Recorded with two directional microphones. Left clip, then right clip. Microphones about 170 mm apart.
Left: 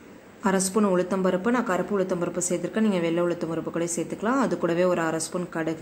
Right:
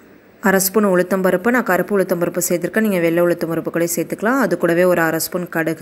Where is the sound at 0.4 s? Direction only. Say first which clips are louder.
Right 8 dB; 30° right (ahead or behind).